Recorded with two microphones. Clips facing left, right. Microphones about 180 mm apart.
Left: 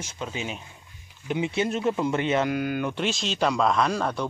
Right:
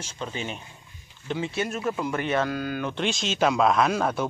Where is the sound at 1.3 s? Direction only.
20° left (ahead or behind).